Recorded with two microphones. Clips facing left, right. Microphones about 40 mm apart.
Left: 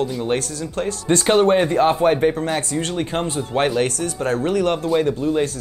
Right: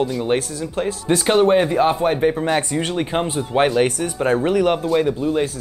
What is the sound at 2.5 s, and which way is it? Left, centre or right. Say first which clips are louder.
Speech: right 2 dB; centre.